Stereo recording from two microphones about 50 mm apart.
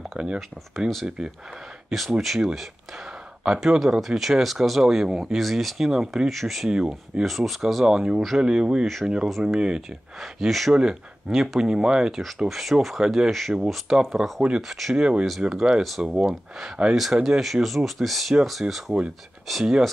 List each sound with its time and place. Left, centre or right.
0.7 s speech: centre
1.0 s speech: centre
6.7 s speech: centre
7.2 s speech: centre
7.8 s speech: centre
10.2 s speech: centre
10.7 s speech: centre
12.1 s speech: centre
13.0 s speech: centre
13.3 s speech: centre
15.0 s speech: centre
16.0 s speech: centre